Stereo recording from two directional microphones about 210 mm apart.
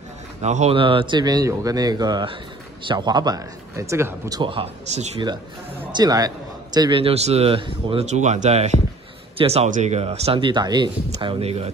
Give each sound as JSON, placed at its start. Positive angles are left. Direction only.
{"t": 0.4, "sound": "a man's voice", "side_deg": -30}